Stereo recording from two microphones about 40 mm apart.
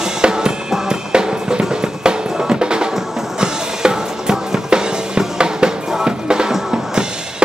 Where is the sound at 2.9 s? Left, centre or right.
Centre.